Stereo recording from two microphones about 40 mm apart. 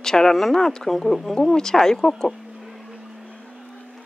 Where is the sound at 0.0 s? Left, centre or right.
Centre.